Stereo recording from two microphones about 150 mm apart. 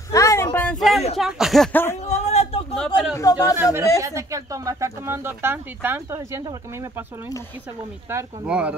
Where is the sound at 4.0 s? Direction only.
20° right (ahead or behind).